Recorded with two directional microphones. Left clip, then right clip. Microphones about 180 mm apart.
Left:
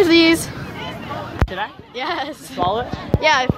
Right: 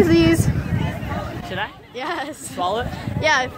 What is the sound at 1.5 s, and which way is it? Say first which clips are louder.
Speech: left 1 dB; 10° right (ahead or behind).